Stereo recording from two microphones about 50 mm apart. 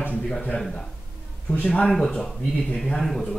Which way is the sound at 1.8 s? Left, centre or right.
Centre.